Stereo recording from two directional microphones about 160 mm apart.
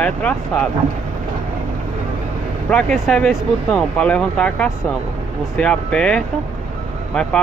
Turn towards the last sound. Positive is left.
turn(degrees=5)  # may be behind; listen again after turning